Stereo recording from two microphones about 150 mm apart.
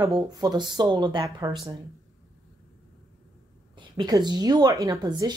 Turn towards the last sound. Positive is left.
turn(degrees=-25)  # may be behind; listen again after turning